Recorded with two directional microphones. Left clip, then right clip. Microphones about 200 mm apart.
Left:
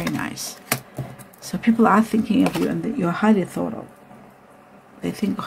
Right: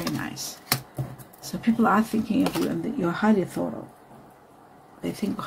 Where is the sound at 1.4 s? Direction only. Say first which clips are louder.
Left 5 dB; 20° left (ahead or behind).